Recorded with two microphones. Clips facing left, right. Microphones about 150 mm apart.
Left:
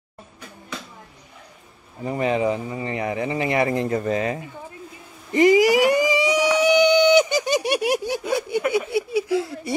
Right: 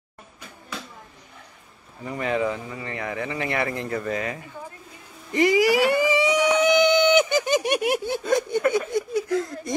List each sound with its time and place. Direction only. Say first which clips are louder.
2.0 s speech: left 4 dB; 25° left (ahead or behind)
5.3 s a sound: left 4 dB; 20° left (ahead or behind)
7.9 s speech: even; 15° left (ahead or behind)